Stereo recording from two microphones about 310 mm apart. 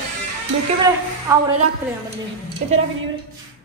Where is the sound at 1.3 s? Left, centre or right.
Centre.